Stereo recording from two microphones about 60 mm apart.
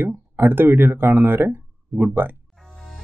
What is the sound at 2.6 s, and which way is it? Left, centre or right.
Music, centre.